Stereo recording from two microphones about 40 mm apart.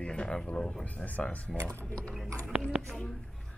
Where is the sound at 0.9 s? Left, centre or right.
Left.